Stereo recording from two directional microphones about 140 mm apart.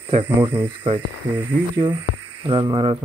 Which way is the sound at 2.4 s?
35° right (ahead or behind).